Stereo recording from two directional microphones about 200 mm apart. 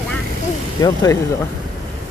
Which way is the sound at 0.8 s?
15° left (ahead or behind).